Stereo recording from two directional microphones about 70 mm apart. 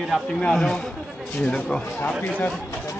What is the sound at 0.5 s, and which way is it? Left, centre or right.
Speech, centre.